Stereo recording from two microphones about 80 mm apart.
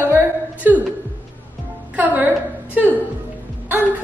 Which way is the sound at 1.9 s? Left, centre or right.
Right.